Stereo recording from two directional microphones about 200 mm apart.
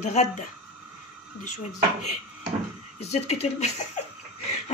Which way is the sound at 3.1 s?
30° left (ahead or behind).